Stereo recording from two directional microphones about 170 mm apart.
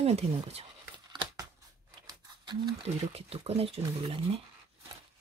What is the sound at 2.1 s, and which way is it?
Speech, 25° right (ahead or behind).